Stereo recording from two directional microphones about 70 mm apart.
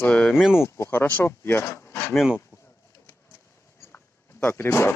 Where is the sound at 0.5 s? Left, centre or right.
Left.